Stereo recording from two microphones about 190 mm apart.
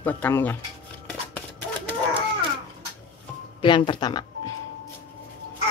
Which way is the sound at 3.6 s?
25° left (ahead or behind).